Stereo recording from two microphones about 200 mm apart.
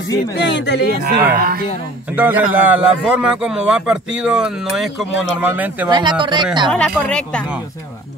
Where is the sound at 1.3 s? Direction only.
50° right (ahead or behind).